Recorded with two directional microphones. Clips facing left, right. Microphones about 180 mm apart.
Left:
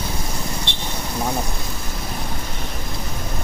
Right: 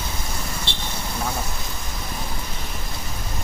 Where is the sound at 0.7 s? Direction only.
15° left (ahead or behind).